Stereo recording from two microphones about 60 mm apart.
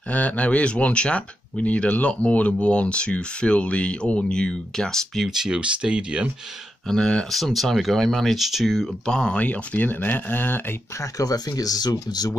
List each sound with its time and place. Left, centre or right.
0.1 s speech: left; by 5.3 s centre
5.3 s speech: centre
6.9 s speech: centre
7.3 s speech: centre
9.0 s speech: centre
9.4 s speech: left
11.0 s speech: left